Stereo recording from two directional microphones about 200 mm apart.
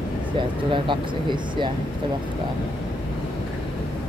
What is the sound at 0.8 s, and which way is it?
Speech, 25° right (ahead or behind).